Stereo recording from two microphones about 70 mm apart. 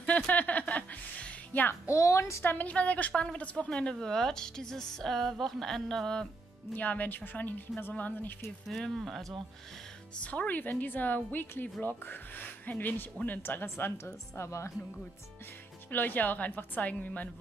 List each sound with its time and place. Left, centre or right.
0.0 s music: left
1.7 s a woman's voice: left
2.5 s a woman's voice: left
6.7 s a woman's voice: left
8.6 s speech: centre
10.2 s a woman's voice: centre; by 14.7 s left
15.9 s a woman's voice: left